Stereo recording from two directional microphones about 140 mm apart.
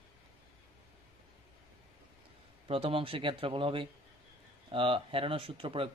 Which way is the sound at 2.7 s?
40° right (ahead or behind).